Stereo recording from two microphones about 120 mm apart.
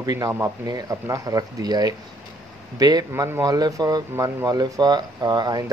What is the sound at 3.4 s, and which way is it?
Speech, 30° right (ahead or behind).